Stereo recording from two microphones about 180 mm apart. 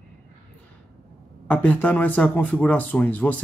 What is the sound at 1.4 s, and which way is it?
Speech, 10° left (ahead or behind).